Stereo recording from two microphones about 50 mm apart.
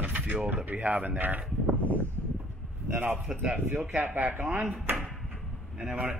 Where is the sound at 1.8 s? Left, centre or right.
Left.